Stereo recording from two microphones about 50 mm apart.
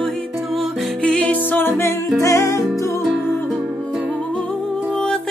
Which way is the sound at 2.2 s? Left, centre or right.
Left.